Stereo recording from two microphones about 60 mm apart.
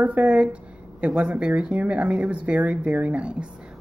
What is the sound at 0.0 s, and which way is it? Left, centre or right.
Speech, right.